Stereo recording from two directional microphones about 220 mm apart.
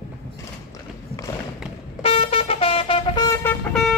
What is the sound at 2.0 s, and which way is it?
Vehicle, 25° left (ahead or behind).